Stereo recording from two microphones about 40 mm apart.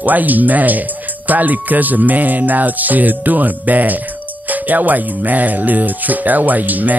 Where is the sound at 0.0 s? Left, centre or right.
Right.